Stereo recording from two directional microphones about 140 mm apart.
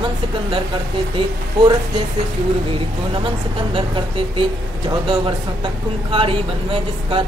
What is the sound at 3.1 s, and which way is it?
Speech, 40° right (ahead or behind).